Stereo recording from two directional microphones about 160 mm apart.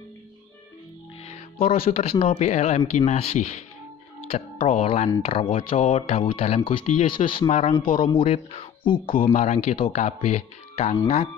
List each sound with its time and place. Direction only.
1.2 s speech: 40° left (ahead or behind)
4.6 s speech: 40° left (ahead or behind)
7.8 s speech: 60° left (ahead or behind)
8.1 s speech: 35° left (ahead or behind)
9.3 s speech: 45° left (ahead or behind)